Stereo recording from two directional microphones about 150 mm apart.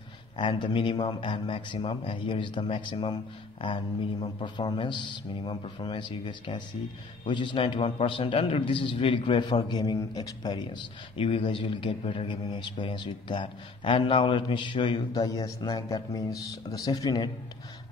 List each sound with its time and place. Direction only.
0.4 s a man's voice: 30° left (ahead or behind)